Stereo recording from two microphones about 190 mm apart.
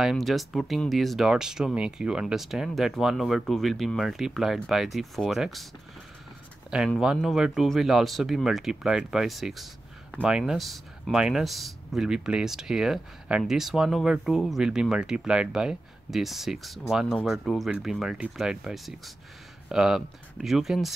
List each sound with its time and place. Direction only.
0.0 s speech: centre (ahead or behind)
6.9 s speech: centre (ahead or behind)